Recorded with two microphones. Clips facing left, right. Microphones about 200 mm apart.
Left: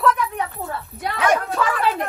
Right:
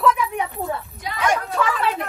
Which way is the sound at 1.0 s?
60° left (ahead or behind).